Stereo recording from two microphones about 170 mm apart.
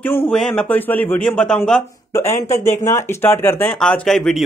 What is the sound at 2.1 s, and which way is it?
Speech, 15° left (ahead or behind).